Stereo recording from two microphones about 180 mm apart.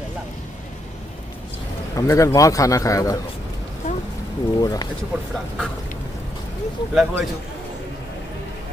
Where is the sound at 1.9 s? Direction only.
15° left (ahead or behind).